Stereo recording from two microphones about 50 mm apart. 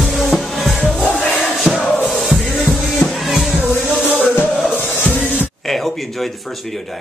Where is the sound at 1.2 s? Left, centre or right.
Left.